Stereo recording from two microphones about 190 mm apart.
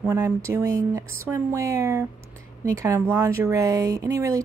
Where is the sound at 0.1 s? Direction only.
15° right (ahead or behind).